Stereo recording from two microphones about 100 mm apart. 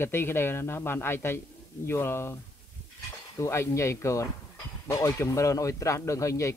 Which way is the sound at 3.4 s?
25° left (ahead or behind).